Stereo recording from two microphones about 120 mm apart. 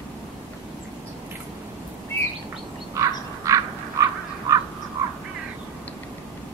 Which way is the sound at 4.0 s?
25° right (ahead or behind).